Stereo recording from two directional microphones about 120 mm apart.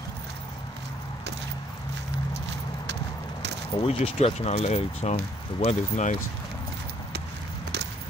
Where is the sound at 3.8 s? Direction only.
55° left (ahead or behind); by 6.1 s 75° left (ahead or behind).